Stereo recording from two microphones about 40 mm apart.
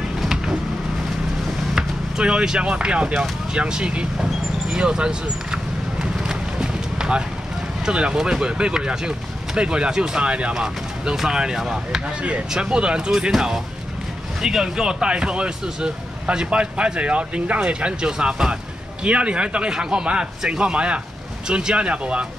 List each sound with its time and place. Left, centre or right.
0.2 s vehicle: centre
1.8 s vehicle: centre
2.6 s speech: right
4.2 s vehicle: centre
7.8 s speech: right
10.2 s speech: right
10.5 s speech: right
12.2 s speech: right
12.5 s speech: right
13.3 s speech: centre; by 22.2 s right